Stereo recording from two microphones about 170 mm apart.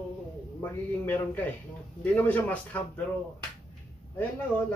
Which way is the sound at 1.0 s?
10° left (ahead or behind).